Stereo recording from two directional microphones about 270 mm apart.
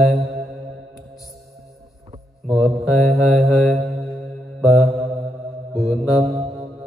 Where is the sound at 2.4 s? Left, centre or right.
Centre.